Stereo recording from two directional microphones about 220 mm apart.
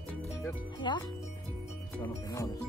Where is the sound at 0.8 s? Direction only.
20° left (ahead or behind).